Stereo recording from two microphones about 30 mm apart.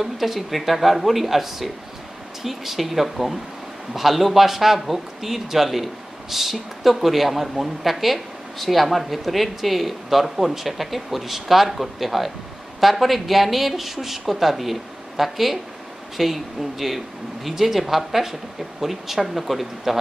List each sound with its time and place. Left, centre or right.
0.0 s a woman's voice: centre